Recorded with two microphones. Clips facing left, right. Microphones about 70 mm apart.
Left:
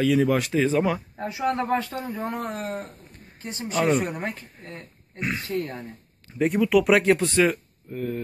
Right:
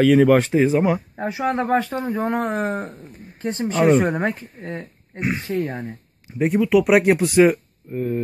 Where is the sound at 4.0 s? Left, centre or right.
Right.